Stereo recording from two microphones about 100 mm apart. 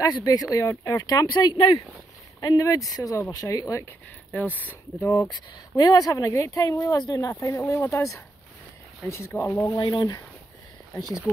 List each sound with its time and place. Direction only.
0.0 s speech: 40° left (ahead or behind)
2.4 s speech: 35° left (ahead or behind)
4.3 s speech: 15° left (ahead or behind)
5.3 s speech: 40° left (ahead or behind)
9.8 s speech: 50° left (ahead or behind)